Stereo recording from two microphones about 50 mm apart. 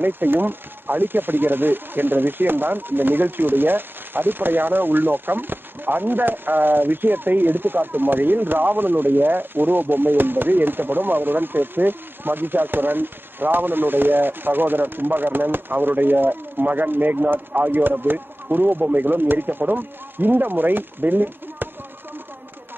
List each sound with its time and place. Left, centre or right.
0.0 s speech: right